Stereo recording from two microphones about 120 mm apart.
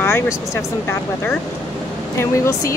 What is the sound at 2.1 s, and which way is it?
Speech, 25° left (ahead or behind).